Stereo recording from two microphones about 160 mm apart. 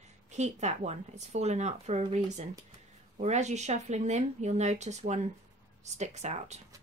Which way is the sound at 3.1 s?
45° right (ahead or behind).